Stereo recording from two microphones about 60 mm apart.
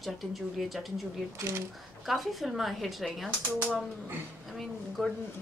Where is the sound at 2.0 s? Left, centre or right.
Centre.